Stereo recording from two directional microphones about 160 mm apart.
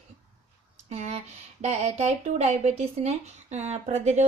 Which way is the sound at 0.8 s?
45° right (ahead or behind).